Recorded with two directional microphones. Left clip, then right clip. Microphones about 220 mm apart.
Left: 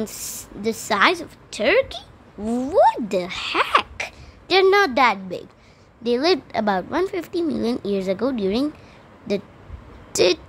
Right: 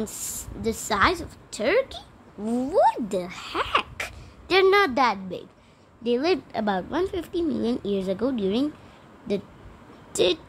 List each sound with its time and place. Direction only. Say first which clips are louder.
0.0 s a woman's voice: left 3 dB; 15° left (ahead or behind)
3.9 s a sound: left 3 dB; 10° right (ahead or behind)
4.6 s a woman's voice: left 3 dB; 5° left (ahead or behind)